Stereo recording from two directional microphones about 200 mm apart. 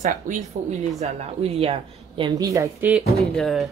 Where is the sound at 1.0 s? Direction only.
30° right (ahead or behind).